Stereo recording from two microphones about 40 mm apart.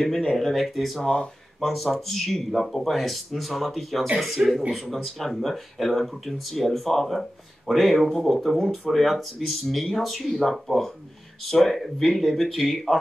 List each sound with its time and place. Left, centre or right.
0.0 s speech: centre
4.4 s speech: right
4.7 s speech: centre